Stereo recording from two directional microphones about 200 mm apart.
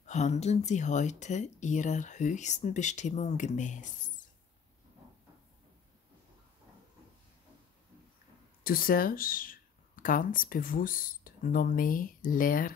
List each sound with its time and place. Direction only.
0.0 s speech: 35° left (ahead or behind)
8.6 s speech: 45° left (ahead or behind)